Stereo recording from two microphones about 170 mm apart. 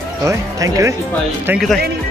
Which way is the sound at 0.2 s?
20° right (ahead or behind).